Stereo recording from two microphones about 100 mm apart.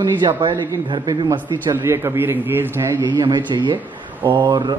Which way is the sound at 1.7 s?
25° right (ahead or behind).